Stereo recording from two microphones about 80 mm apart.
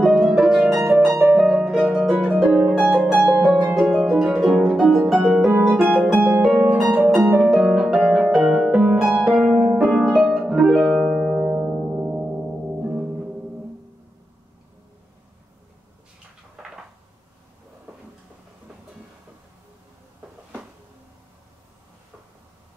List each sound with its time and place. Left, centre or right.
0.0 s harp: centre
1.3 s harp: centre
11.1 s music: centre
11.6 s music: centre